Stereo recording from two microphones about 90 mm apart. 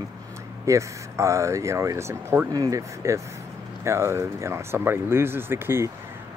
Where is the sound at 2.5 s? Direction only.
40° right (ahead or behind).